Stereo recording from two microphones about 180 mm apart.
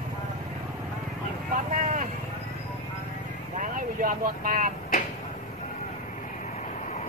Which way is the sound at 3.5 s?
50° right (ahead or behind).